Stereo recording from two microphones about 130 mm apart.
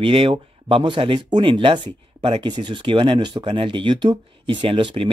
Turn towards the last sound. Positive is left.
turn(degrees=-40)  # may be behind; listen again after turning